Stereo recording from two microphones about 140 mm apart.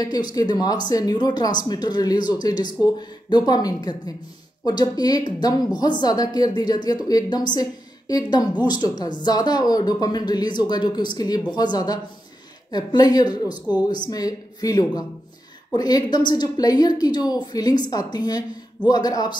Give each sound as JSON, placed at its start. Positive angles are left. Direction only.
{"t": 0.0, "sound": "a woman's voice", "side_deg": 30}
{"t": 8.8, "sound": "a woman's voice", "side_deg": 30}